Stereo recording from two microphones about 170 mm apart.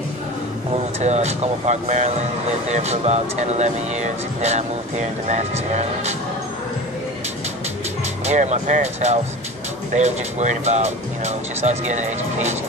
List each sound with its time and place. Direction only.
1.0 s speech: 40° right (ahead or behind)
8.3 s speech: 45° right (ahead or behind)